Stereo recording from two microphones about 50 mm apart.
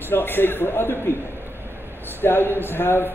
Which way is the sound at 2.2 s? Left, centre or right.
Left.